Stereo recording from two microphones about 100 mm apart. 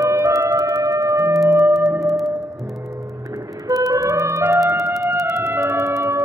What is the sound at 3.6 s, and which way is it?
Music, 35° right (ahead or behind).